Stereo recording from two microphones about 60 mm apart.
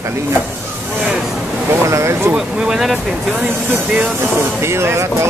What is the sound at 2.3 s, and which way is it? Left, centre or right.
Speech, centre.